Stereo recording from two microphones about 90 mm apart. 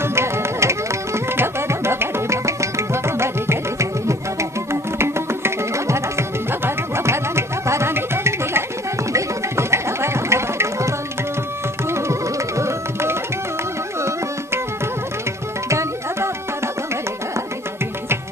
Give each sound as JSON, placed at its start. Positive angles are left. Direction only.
{"t": 0.0, "sound": "music", "side_deg": -30}
{"t": 15.7, "sound": "tabla", "side_deg": -35}